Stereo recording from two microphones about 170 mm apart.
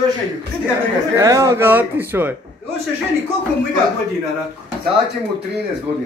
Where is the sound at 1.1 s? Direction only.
20° right (ahead or behind).